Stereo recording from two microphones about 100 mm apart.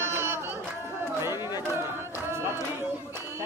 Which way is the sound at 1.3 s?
45° left (ahead or behind).